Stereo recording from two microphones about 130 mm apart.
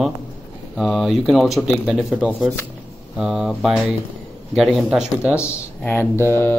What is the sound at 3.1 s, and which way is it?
Speech, 5° right (ahead or behind).